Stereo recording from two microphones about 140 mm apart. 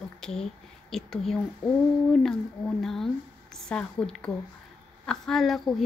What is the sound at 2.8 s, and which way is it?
A woman's voice, centre (ahead or behind).